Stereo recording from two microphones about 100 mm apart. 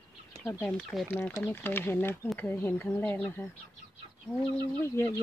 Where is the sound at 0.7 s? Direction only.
5° left (ahead or behind).